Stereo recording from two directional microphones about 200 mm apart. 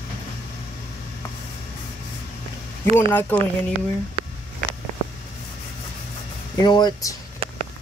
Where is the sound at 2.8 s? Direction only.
10° left (ahead or behind).